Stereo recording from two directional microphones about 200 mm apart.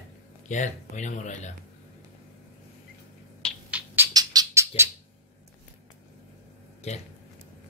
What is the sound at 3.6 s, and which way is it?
Bird, 10° right (ahead or behind).